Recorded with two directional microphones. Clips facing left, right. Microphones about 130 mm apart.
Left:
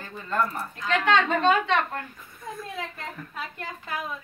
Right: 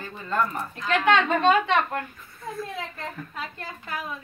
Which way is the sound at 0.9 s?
15° right (ahead or behind).